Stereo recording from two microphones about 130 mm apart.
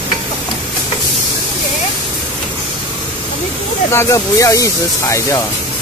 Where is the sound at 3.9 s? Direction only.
20° left (ahead or behind).